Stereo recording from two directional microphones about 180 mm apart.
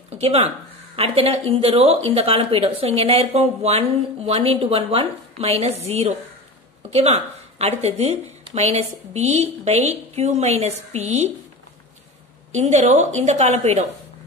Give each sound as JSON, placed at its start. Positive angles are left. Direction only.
{"t": 0.2, "sound": "speech", "side_deg": -35}
{"t": 12.5, "sound": "speech", "side_deg": -40}